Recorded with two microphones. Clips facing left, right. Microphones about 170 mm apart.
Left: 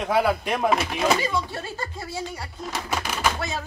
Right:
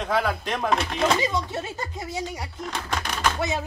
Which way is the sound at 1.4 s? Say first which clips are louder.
Right 1 dB; 20° right (ahead or behind).